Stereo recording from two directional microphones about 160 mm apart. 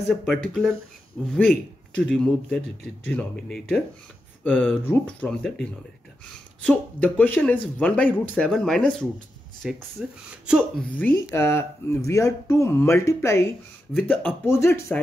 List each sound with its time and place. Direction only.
0.0 s a man's voice: 5° left (ahead or behind)
11.1 s speech: 15° left (ahead or behind)